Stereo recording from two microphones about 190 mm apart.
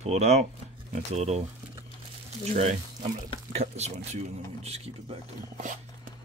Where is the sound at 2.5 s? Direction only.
30° right (ahead or behind).